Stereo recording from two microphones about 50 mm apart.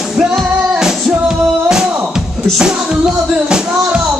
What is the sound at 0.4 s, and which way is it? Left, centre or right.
Music, centre.